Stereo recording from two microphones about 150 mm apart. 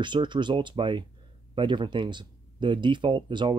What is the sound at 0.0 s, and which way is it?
Speech, 30° right (ahead or behind).